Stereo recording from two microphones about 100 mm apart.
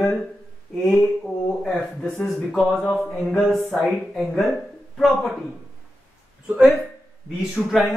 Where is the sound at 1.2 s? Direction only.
5° left (ahead or behind).